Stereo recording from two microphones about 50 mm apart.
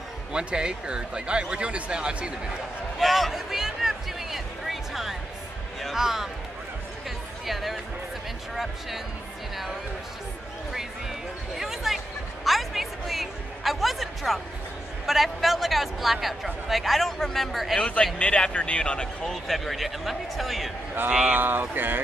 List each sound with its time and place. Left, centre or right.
0.3 s speech: centre
3.0 s music: centre
5.9 s speech: centre
7.4 s music: centre
11.5 s basketball bounce: centre
12.4 s a sound: centre
15.0 s a man's voice: centre
17.7 s a man's voice: centre
19.3 s a man's voice: centre
21.3 s speech: right